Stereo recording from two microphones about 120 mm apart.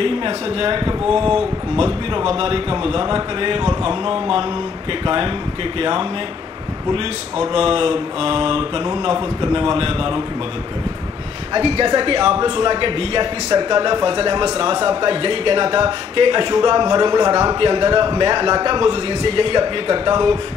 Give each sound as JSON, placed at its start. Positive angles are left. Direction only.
{"t": 0.0, "sound": "mantra", "side_deg": -50}
{"t": 7.5, "sound": "mantra", "side_deg": -50}
{"t": 11.5, "sound": "mantra", "side_deg": -45}
{"t": 13.5, "sound": "a man's voice", "side_deg": -35}
{"t": 14.9, "sound": "mantra", "side_deg": -45}
{"t": 16.2, "sound": "a man's voice", "side_deg": -45}
{"t": 17.6, "sound": "mantra", "side_deg": -45}